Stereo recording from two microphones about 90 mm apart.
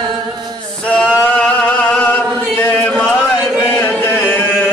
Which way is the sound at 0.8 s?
15° left (ahead or behind).